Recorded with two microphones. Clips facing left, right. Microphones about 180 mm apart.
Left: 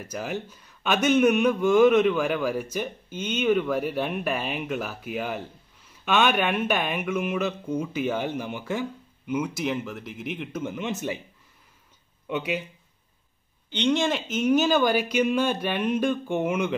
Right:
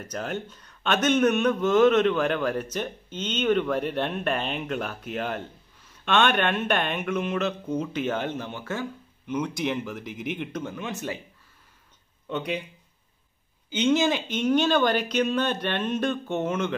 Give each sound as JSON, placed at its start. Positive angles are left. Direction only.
{"t": 0.0, "sound": "speech", "side_deg": 5}
{"t": 10.6, "sound": "speech", "side_deg": 20}
{"t": 12.3, "sound": "speech", "side_deg": 5}
{"t": 13.7, "sound": "speech", "side_deg": -5}